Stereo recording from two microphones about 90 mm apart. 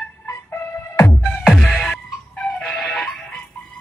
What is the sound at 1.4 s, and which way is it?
Music, 5° left (ahead or behind).